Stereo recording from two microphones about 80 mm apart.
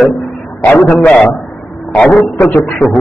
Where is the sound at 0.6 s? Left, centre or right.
Left.